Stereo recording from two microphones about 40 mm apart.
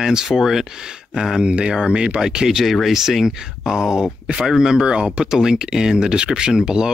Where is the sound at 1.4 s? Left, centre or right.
Right.